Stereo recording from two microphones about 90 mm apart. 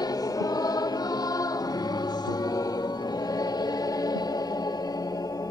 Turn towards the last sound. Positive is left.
turn(degrees=45)  # may be behind; listen again after turning